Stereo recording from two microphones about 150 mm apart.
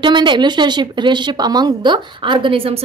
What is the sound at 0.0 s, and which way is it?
Speech, 30° right (ahead or behind).